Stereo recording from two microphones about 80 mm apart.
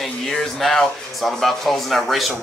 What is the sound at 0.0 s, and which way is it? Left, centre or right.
Speech, centre.